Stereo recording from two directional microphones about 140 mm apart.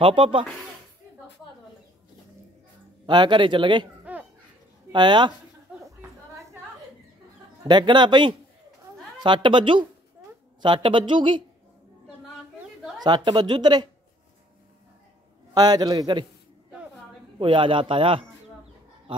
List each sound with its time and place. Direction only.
0.0 s a woman's voice: 40° right (ahead or behind)
3.1 s a woman's voice: 35° right (ahead or behind)
4.0 s children playing: 10° right (ahead or behind)
4.9 s a woman's voice: 35° right (ahead or behind)
7.6 s a woman's voice: 35° right (ahead or behind)
13.0 s a woman's voice: 30° right (ahead or behind)
15.5 s a man's voice: 30° right (ahead or behind)
17.4 s a woman's voice: 35° right (ahead or behind)